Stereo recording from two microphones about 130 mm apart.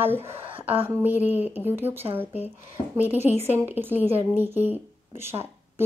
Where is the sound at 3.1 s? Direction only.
60° left (ahead or behind).